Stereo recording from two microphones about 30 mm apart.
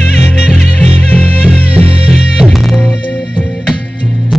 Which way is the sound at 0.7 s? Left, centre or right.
Left.